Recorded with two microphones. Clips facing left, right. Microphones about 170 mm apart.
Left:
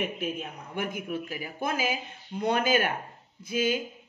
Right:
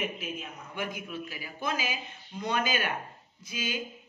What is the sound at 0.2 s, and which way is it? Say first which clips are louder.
A woman's voice: left 5 dB; 50° left (ahead or behind).